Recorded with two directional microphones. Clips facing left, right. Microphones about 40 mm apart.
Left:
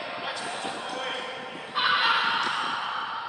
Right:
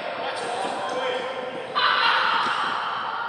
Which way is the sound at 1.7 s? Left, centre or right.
Right.